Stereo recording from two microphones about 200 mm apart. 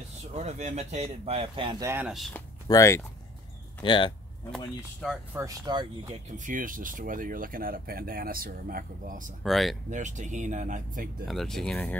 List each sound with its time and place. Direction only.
0.4 s speech: 35° right (ahead or behind); by 2.4 s centre (ahead or behind)
2.7 s speech: 15° left (ahead or behind)
5.3 s speech: 15° right (ahead or behind)
6.3 s speech: 40° right (ahead or behind)
9.4 s speech: centre (ahead or behind)
9.8 s speech: 40° right (ahead or behind)
11.2 s speech: centre (ahead or behind)